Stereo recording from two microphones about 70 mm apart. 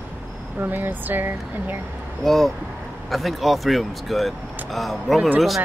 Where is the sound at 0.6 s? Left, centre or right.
Right.